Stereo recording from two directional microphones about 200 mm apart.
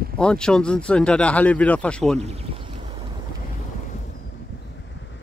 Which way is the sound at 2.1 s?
30° right (ahead or behind).